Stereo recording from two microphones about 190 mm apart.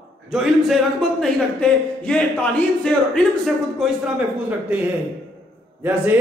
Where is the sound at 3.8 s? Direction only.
5° right (ahead or behind).